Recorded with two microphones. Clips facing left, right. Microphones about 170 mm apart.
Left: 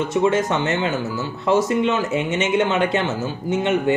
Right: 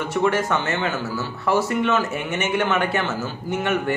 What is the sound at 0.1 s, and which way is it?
Speech, 20° left (ahead or behind).